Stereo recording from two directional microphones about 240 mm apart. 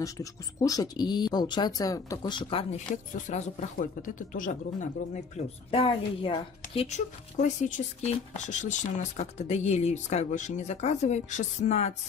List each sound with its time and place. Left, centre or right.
0.0 s speech: centre; by 11.9 s left